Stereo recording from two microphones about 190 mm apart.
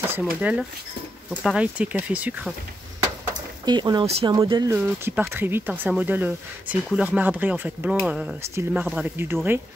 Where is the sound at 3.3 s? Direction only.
20° right (ahead or behind).